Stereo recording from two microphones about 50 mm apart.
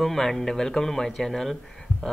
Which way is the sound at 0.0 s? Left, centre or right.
Centre.